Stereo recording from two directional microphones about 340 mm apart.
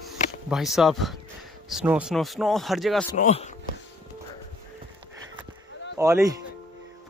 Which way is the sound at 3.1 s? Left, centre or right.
Centre.